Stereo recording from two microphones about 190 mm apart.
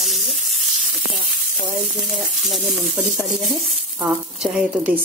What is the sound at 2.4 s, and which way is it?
A woman's voice, centre (ahead or behind).